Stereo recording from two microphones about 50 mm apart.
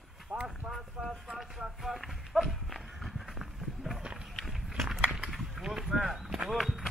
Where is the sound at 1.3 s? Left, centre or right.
Centre.